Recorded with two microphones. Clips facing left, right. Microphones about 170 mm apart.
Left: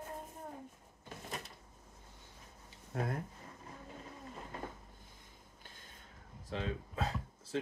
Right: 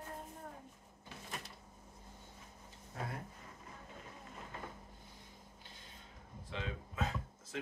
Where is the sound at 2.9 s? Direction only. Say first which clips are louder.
Left 6 dB; 60° left (ahead or behind).